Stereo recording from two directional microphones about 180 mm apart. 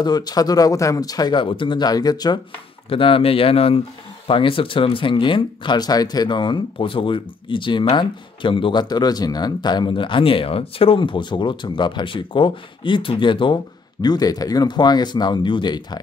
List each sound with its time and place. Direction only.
0.0 s speech: 20° left (ahead or behind)